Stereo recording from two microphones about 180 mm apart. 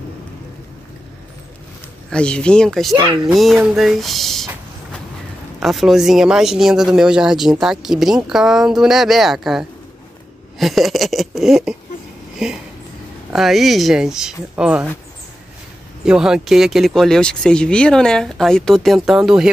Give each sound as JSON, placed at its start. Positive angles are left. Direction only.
{"t": 2.0, "sound": "speech", "side_deg": 5}
{"t": 3.0, "sound": "speech", "side_deg": -25}
{"t": 3.3, "sound": "speech", "side_deg": 0}
{"t": 5.6, "sound": "speech", "side_deg": 0}
{"t": 16.1, "sound": "speech", "side_deg": -5}